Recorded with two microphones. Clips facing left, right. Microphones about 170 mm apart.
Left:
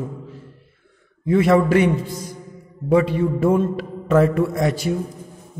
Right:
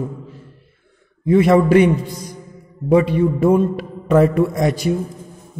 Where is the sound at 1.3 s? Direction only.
20° right (ahead or behind).